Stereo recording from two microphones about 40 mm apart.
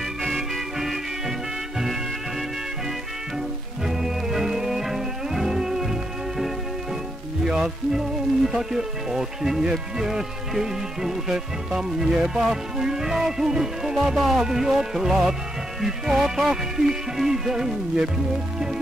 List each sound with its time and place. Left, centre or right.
0.3 s music: centre
3.8 s music: centre
7.4 s speech: centre